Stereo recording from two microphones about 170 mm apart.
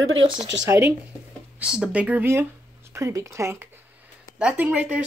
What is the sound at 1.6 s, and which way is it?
Speech, 5° right (ahead or behind).